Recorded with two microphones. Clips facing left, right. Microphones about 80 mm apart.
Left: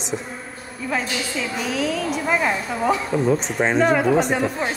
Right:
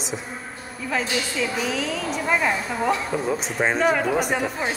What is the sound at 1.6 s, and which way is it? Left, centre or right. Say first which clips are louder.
A woman's voice: left 3 dB; centre.